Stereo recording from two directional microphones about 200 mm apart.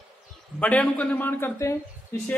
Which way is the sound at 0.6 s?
5° left (ahead or behind).